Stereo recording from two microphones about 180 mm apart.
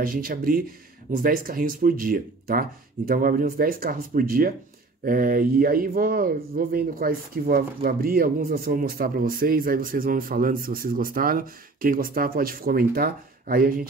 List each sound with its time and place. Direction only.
0.0 s speech: 50° right (ahead or behind)